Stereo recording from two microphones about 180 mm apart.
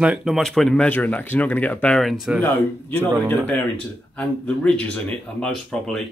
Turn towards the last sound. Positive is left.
turn(degrees=5)  # may be behind; listen again after turning